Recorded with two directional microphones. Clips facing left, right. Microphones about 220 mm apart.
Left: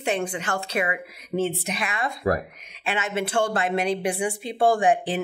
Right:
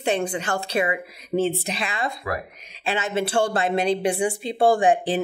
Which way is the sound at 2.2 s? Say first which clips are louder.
Left 9 dB; 40° left (ahead or behind).